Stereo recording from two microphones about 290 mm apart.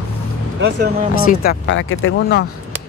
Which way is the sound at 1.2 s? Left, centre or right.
Left.